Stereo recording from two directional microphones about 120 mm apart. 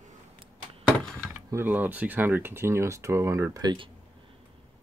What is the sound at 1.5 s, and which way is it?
Speech, 15° right (ahead or behind).